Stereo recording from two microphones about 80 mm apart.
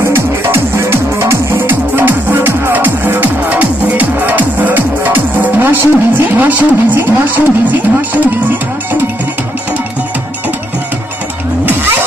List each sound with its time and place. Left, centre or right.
0.1 s music: right